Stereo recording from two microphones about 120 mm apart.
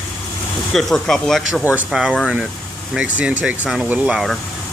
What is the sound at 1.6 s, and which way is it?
Speech, 15° right (ahead or behind).